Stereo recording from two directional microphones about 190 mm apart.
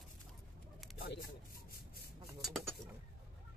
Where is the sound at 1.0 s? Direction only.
55° left (ahead or behind).